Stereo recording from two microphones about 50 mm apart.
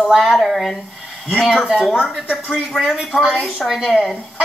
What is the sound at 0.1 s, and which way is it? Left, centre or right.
Speech, centre.